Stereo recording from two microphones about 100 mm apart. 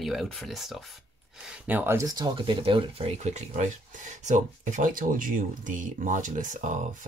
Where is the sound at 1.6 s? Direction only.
20° right (ahead or behind).